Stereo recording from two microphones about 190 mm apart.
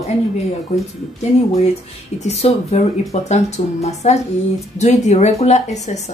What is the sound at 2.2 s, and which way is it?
A woman's voice, 35° left (ahead or behind).